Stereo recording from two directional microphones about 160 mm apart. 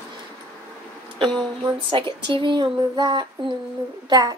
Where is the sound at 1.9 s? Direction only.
30° right (ahead or behind).